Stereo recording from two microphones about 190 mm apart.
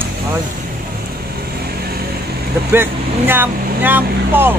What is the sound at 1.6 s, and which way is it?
Vehicle, 55° right (ahead or behind).